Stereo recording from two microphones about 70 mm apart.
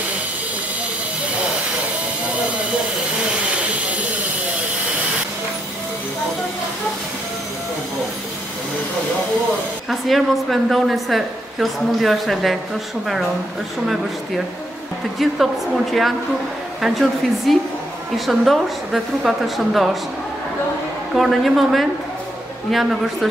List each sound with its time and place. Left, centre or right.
3.5 s hiss: centre
9.8 s a woman's voice: centre
15.1 s a woman's voice: centre
21.1 s a woman's voice: centre